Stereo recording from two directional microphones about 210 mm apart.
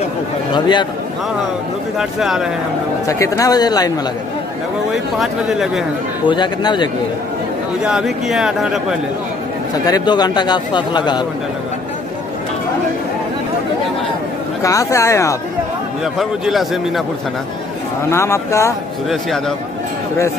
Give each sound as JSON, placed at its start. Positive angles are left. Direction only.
{"t": 0.5, "sound": "a man's voice", "side_deg": 20}
{"t": 2.0, "sound": "speech", "side_deg": 0}
{"t": 3.1, "sound": "speech", "side_deg": 15}
{"t": 5.2, "sound": "speech", "side_deg": 0}
{"t": 6.2, "sound": "a man's voice", "side_deg": 20}
{"t": 7.8, "sound": "speech", "side_deg": 0}
{"t": 9.8, "sound": "a man's voice", "side_deg": 20}
{"t": 14.6, "sound": "speech", "side_deg": 15}
{"t": 16.2, "sound": "speech", "side_deg": 0}
{"t": 18.1, "sound": "speech", "side_deg": 15}